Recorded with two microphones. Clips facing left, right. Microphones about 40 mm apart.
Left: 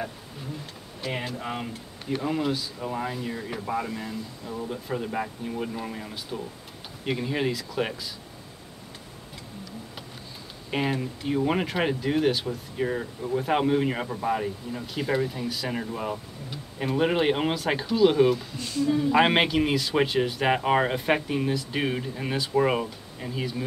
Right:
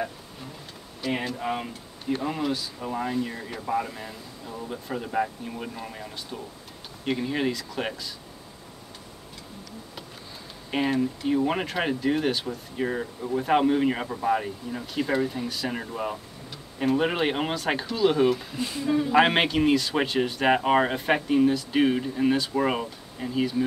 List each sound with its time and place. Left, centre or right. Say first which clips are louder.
1.0 s speech: right 3 dB; centre
10.7 s speech: right 3 dB; centre
16.8 s speech: even; centre; by 19.0 s right
19.0 s speech: right 1 dB; centre